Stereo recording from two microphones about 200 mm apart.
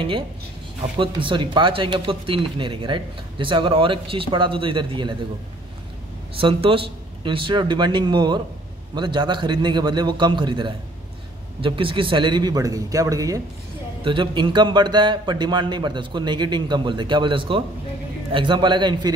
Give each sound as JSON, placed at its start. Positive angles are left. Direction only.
{"t": 0.9, "sound": "speech", "side_deg": -25}
{"t": 6.3, "sound": "speech", "side_deg": -25}